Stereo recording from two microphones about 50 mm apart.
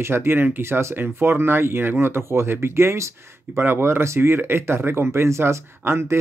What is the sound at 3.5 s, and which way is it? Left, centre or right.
Speech, right.